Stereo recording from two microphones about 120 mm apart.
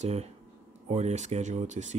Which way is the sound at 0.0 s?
65° right (ahead or behind).